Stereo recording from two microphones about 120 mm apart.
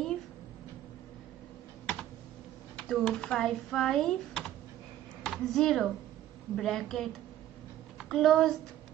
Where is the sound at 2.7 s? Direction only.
5° left (ahead or behind).